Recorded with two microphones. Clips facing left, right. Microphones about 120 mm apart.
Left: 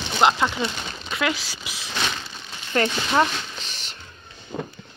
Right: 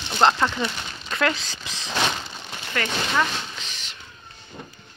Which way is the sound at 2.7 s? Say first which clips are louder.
Left 4 dB; 30° left (ahead or behind).